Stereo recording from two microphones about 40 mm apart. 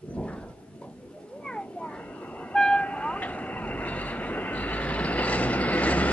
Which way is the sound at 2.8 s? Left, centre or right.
Left.